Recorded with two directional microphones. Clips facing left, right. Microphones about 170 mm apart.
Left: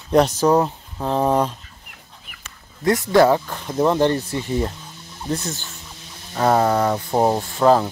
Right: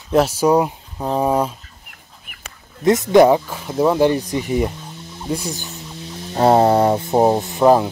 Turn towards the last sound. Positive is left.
turn(degrees=-15)  # may be behind; listen again after turning